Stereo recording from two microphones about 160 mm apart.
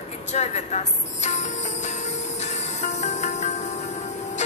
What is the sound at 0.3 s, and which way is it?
Speech, 45° left (ahead or behind).